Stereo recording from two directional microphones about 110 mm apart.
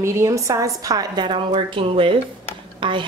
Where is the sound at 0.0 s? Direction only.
25° right (ahead or behind).